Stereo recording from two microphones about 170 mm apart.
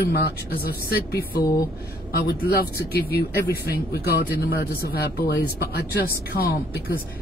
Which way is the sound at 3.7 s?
65° left (ahead or behind).